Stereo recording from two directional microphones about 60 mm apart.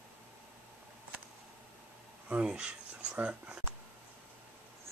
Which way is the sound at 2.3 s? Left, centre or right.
Centre.